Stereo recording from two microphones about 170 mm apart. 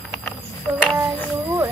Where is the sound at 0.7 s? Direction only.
10° right (ahead or behind).